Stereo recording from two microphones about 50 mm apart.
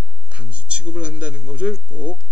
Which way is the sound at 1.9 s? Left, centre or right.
Right.